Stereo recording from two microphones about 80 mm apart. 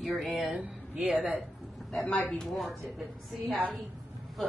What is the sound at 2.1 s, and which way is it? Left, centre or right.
Speech, left.